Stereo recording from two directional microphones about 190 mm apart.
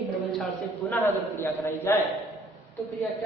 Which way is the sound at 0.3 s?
Centre (ahead or behind).